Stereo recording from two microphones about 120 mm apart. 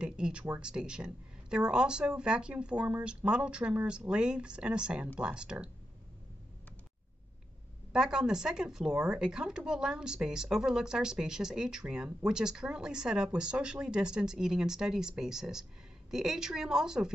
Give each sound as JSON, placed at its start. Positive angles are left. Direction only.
{"t": 0.0, "sound": "a woman's voice", "side_deg": -10}
{"t": 7.9, "sound": "speech", "side_deg": -5}